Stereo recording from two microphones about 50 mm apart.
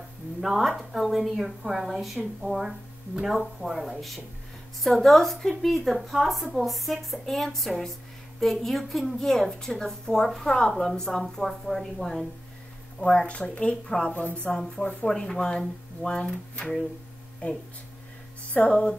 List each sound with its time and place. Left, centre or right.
0.4 s a woman's voice: centre
13.0 s speech: left